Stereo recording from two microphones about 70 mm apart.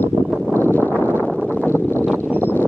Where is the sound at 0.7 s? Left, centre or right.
Left.